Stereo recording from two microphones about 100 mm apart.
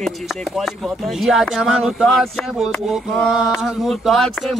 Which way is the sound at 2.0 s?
5° left (ahead or behind).